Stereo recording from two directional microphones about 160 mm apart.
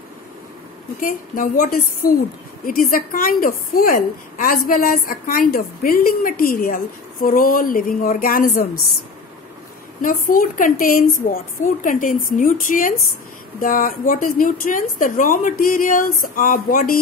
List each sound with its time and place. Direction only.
1.0 s a woman's voice: 60° left (ahead or behind)
10.0 s a woman's voice: 60° left (ahead or behind)